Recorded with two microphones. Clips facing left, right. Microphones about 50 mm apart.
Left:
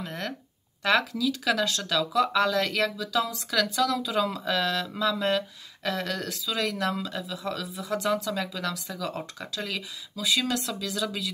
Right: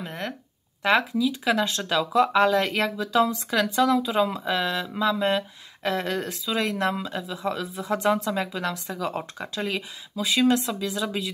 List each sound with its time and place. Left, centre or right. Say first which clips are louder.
0.0 s a sound: right 1 dB; centre
0.8 s speech: right 3 dB; right
5.9 s speech: right 4 dB; right